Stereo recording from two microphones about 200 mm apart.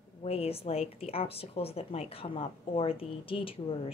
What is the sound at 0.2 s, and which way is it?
Speech, 30° left (ahead or behind).